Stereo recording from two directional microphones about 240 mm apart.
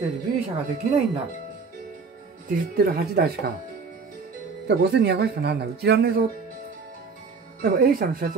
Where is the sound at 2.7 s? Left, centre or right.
Right.